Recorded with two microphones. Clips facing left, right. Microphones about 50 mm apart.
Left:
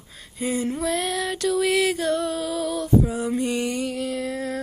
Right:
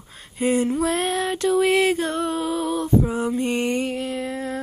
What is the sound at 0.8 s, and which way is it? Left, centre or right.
Music, right.